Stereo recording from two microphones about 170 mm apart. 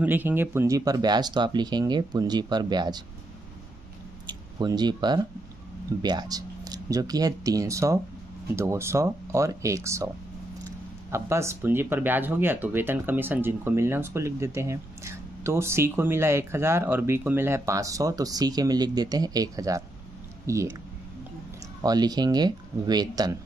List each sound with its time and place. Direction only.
0.0 s speech: 10° right (ahead or behind)
4.3 s speech: 25° right (ahead or behind)
21.8 s speech: 25° right (ahead or behind)